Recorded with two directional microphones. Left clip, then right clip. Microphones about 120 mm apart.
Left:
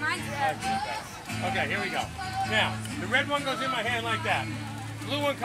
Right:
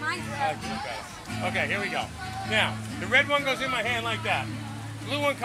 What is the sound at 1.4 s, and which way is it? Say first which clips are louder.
Speech: right 1 dB; 5° right (ahead or behind).